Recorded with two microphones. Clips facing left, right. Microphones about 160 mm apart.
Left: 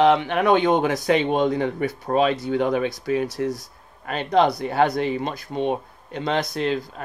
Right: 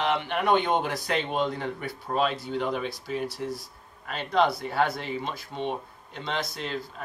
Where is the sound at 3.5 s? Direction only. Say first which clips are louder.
Left 1 dB; 70° left (ahead or behind).